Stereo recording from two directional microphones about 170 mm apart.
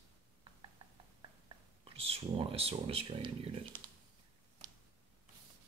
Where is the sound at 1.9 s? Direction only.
35° right (ahead or behind).